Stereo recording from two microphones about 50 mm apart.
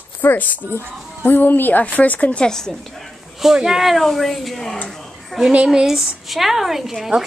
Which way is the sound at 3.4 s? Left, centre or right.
Centre.